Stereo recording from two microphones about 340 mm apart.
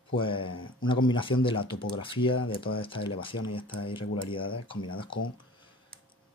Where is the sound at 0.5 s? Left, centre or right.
Left.